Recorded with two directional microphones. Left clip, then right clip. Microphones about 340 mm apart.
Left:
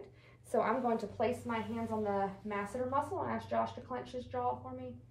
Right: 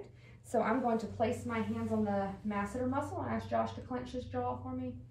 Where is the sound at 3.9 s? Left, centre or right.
Centre.